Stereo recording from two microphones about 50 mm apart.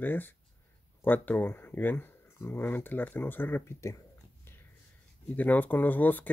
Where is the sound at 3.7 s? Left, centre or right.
Left.